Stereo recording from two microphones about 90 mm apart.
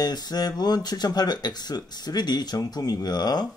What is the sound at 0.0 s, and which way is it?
Speech, 50° left (ahead or behind).